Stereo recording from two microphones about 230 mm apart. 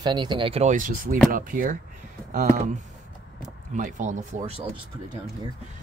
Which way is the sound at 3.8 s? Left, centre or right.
Right.